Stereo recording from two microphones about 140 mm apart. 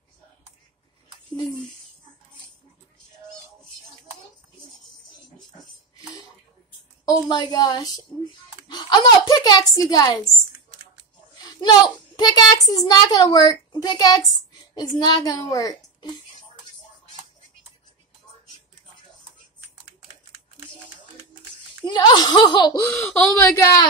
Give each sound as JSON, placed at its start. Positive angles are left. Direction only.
{"t": 1.3, "sound": "speech", "side_deg": 35}
{"t": 7.1, "sound": "a woman's voice", "side_deg": 30}
{"t": 11.4, "sound": "a sound", "side_deg": 30}
{"t": 12.2, "sound": "a child's voice", "side_deg": 30}
{"t": 21.8, "sound": "a woman's voice", "side_deg": 30}